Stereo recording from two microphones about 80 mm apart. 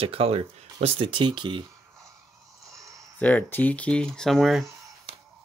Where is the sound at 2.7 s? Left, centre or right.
Right.